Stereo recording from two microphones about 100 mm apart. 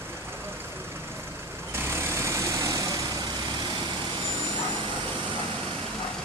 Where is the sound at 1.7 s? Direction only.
25° right (ahead or behind).